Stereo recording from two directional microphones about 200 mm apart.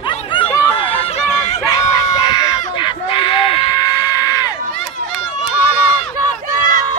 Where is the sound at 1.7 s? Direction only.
20° left (ahead or behind).